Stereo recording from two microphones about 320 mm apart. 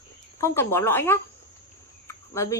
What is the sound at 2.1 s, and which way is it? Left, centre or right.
Cricket, centre.